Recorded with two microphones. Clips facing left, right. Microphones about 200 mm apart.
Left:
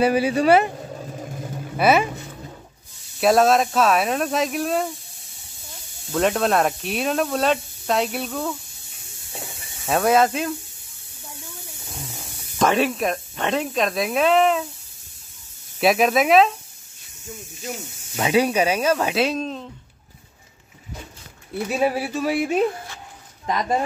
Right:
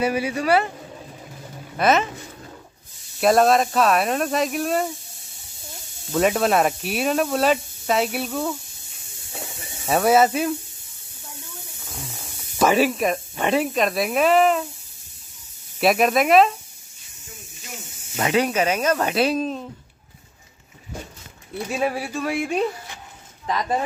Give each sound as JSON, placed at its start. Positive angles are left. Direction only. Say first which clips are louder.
{"t": 0.0, "sound": "speech", "louder": "left 4 dB", "side_deg": 30}
{"t": 1.8, "sound": "speech", "louder": "left 1 dB", "side_deg": 10}
{"t": 3.2, "sound": "speech", "louder": "even", "side_deg": 0}
{"t": 6.1, "sound": "speech", "louder": "right 1 dB", "side_deg": -5}
{"t": 9.8, "sound": "speech", "louder": "right 1 dB", "side_deg": -5}
{"t": 12.5, "sound": "speech", "louder": "right 1 dB", "side_deg": -5}
{"t": 15.8, "sound": "speech", "louder": "even", "side_deg": 0}
{"t": 18.1, "sound": "speech", "louder": "left 2 dB", "side_deg": 10}
{"t": 21.8, "sound": "speech", "louder": "left 3 dB", "side_deg": 5}